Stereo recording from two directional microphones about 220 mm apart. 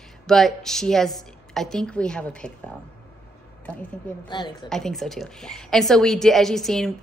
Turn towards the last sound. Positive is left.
turn(degrees=0)  # may be behind; listen again after turning